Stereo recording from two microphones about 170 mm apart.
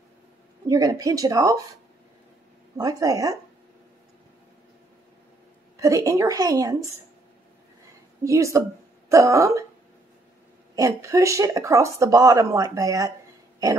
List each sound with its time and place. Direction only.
0.7 s speech: 20° right (ahead or behind)
2.8 s speech: 20° right (ahead or behind)
5.8 s speech: 20° right (ahead or behind)
8.2 s a woman's voice: 15° right (ahead or behind)
10.8 s speech: 20° right (ahead or behind)